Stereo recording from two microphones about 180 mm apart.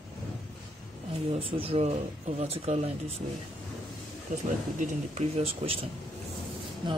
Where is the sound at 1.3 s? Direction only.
30° right (ahead or behind).